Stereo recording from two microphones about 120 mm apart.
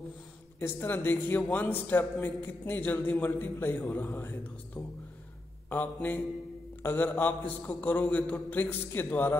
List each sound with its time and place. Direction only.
0.6 s a man's voice: 15° left (ahead or behind)